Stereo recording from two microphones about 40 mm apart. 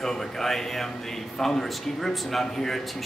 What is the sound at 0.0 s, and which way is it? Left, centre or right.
A man's voice, centre.